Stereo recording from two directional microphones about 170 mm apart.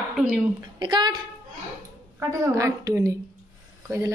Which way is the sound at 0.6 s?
25° right (ahead or behind).